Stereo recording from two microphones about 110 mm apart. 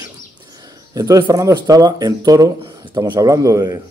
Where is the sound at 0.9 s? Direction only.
30° right (ahead or behind).